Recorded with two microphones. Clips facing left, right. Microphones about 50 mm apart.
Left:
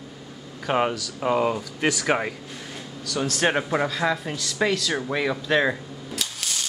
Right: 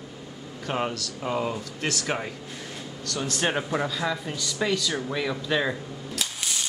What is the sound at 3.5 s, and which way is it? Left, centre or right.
Speech, centre.